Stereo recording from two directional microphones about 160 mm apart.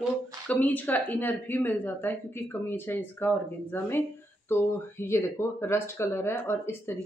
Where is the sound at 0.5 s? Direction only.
10° left (ahead or behind).